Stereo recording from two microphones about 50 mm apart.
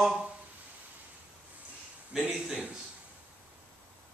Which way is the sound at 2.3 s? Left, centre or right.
Centre.